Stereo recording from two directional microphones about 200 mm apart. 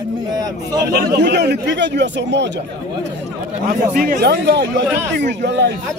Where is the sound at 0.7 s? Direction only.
50° right (ahead or behind).